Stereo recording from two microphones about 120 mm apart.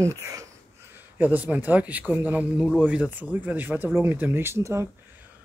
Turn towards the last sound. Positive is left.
turn(degrees=-25)  # may be behind; listen again after turning